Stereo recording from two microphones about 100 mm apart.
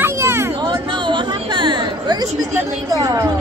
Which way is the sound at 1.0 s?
50° right (ahead or behind).